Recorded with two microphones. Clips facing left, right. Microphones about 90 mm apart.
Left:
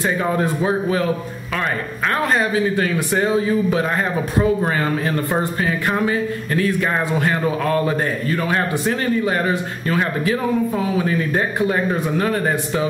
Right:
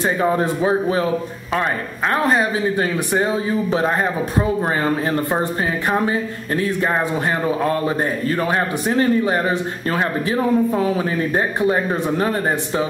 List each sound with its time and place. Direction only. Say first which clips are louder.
0.0 s speech: right 1 dB; 25° right (ahead or behind)
2.2 s speech: even; 25° right (ahead or behind)
5.6 s speech: even; 25° right (ahead or behind)